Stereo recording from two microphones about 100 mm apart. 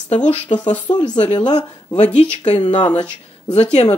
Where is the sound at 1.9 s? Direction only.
90° left.